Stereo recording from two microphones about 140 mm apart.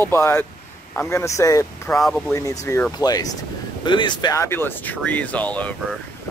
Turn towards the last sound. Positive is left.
turn(degrees=10)  # may be behind; listen again after turning